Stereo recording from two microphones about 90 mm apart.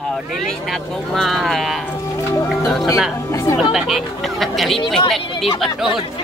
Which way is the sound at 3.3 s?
40° left (ahead or behind).